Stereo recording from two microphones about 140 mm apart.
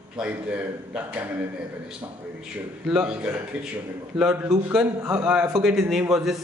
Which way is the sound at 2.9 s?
5° right (ahead or behind).